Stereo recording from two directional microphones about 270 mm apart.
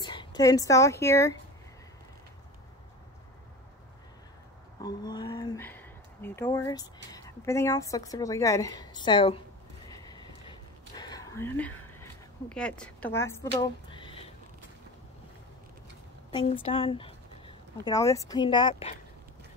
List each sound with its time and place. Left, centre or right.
0.0 s a woman's voice: centre
4.8 s speech: centre
9.9 s a sound: centre
12.0 s speech: centre
13.5 s a sound: centre
16.3 s speech: centre